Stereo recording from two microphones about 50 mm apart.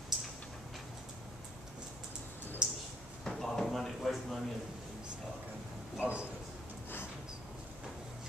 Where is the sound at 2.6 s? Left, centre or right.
Centre.